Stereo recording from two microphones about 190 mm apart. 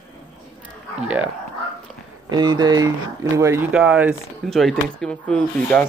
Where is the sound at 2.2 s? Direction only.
25° right (ahead or behind).